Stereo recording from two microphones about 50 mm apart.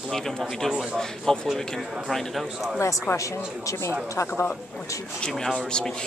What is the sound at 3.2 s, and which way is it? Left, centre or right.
Speech, left.